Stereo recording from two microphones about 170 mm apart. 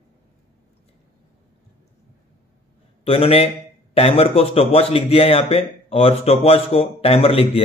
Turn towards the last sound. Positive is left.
turn(degrees=35)  # may be behind; listen again after turning